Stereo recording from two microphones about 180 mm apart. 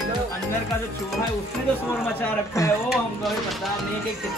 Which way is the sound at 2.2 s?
15° left (ahead or behind).